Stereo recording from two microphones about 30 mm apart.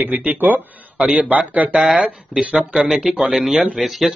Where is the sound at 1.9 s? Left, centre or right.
Right.